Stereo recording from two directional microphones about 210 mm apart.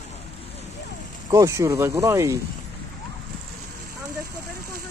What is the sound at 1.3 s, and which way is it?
Speech, 15° right (ahead or behind).